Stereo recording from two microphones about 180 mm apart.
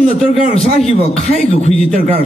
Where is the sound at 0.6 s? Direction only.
35° left (ahead or behind).